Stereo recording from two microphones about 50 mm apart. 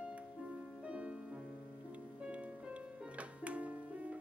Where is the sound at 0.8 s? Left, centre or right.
Right.